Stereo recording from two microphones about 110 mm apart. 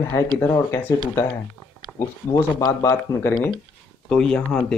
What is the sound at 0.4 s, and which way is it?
Speech, 25° left (ahead or behind).